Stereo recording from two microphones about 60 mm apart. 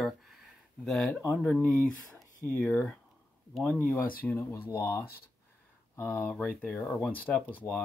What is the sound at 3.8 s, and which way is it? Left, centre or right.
Speech, left.